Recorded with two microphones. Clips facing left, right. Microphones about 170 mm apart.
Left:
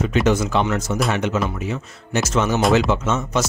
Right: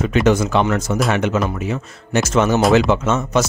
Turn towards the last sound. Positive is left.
turn(degrees=-55)  # may be behind; listen again after turning